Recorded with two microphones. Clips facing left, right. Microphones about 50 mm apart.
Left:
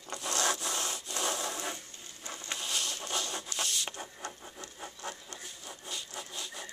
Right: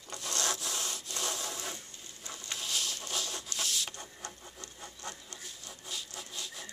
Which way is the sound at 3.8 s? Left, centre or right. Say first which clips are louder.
Left 4 dB; centre.